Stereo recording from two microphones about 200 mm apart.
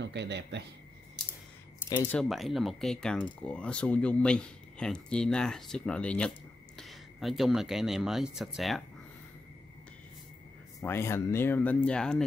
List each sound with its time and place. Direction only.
0.0 s a man's voice: 60° right (ahead or behind)
2.0 s speech: centre (ahead or behind)
10.8 s speech: 15° left (ahead or behind)